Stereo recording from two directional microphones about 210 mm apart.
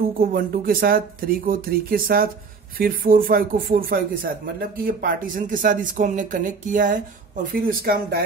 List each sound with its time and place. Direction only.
0.2 s speech: 45° right (ahead or behind)